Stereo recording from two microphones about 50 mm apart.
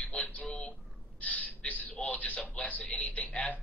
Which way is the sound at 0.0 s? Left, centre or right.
Left.